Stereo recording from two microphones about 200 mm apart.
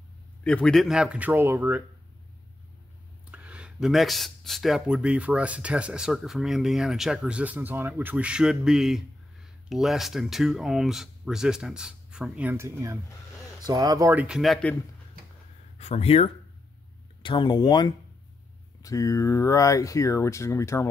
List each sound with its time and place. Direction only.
0.4 s speech: 5° left (ahead or behind); by 1.8 s 10° right (ahead or behind)
3.3 s speech: 5° right (ahead or behind)
15.8 s speech: 30° left (ahead or behind); by 20.9 s 15° left (ahead or behind)